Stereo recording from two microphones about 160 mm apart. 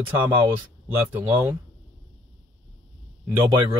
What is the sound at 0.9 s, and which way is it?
Speech, 15° right (ahead or behind).